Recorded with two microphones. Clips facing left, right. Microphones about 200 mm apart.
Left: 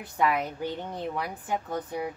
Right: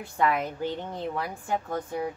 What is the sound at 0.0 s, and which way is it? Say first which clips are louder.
A woman's voice: right 1 dB; 15° left (ahead or behind).